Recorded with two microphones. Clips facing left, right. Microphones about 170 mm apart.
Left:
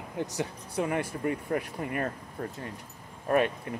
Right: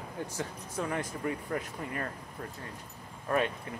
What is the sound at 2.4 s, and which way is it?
Speech, 40° left (ahead or behind).